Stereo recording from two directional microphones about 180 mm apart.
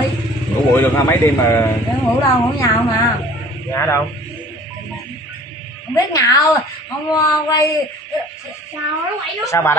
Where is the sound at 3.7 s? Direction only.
15° left (ahead or behind).